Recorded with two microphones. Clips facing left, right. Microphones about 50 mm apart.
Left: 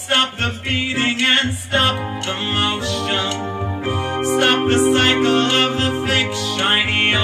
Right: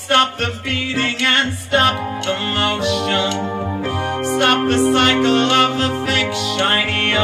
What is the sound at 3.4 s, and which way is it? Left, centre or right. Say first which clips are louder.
Organ: right 2 dB; centre.